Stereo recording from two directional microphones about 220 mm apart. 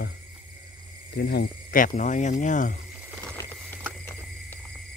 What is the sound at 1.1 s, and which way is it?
Speech, 50° left (ahead or behind).